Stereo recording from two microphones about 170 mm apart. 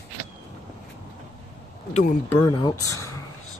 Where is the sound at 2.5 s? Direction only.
25° left (ahead or behind).